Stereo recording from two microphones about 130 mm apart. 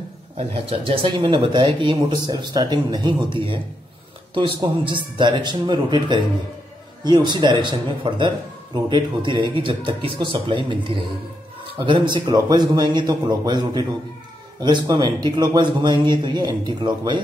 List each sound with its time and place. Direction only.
0.4 s a man's voice: 45° right (ahead or behind)
11.8 s a man's voice: 35° right (ahead or behind)